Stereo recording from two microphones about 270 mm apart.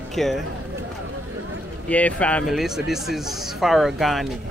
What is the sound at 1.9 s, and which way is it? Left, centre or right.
Speech, centre.